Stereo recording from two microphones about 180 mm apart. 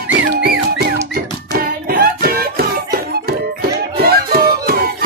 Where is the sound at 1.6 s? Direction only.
55° right (ahead or behind).